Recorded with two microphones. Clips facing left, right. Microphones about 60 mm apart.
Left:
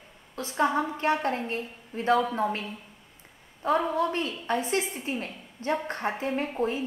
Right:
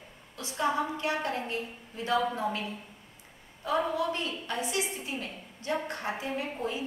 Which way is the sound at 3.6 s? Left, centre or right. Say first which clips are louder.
Left 4 dB; left.